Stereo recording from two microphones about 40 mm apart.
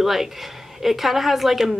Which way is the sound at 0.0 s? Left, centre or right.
Centre.